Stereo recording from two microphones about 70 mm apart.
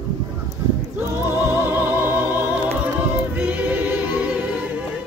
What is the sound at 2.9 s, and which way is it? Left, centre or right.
Choir, right.